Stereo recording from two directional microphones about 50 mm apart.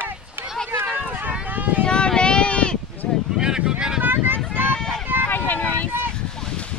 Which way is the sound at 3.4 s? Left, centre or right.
Centre.